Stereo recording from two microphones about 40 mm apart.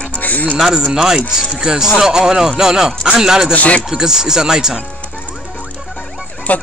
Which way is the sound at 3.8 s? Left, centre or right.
Centre.